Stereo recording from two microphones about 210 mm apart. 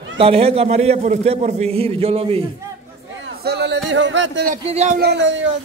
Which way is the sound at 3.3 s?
55° right (ahead or behind).